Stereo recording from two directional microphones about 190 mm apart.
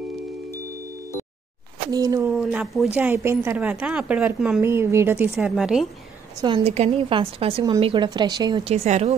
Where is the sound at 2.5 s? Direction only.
5° right (ahead or behind).